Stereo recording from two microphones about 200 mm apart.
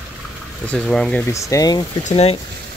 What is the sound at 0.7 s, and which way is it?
Speech, 5° left (ahead or behind).